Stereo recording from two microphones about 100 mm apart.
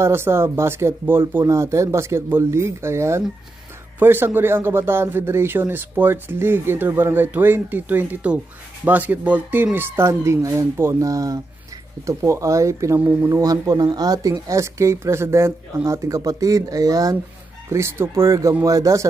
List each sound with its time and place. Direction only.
0.0 s speech: 25° right (ahead or behind)
17.6 s speech: 25° right (ahead or behind)